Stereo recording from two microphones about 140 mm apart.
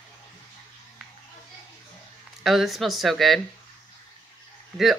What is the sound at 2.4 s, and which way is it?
Speech, centre (ahead or behind).